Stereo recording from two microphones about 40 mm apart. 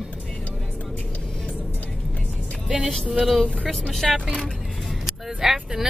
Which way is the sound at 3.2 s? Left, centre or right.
Centre.